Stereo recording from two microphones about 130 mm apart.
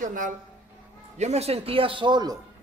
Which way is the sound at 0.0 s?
90° right.